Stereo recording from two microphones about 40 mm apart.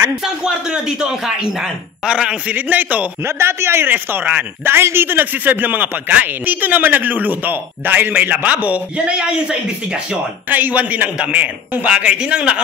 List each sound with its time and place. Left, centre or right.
0.4 s speech: centre
2.5 s a man's voice: right
3.3 s a man's voice: right
3.9 s a man's voice: right
4.6 s a man's voice: right
8.9 s speech: right
10.5 s a man's voice: right